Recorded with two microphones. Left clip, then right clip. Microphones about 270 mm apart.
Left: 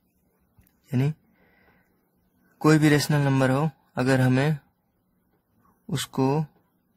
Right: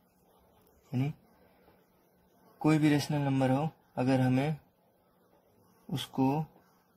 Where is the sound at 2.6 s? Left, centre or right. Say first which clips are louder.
Left 8 dB; left.